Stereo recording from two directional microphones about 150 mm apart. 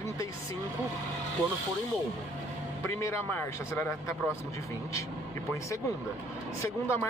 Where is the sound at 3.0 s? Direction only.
15° left (ahead or behind).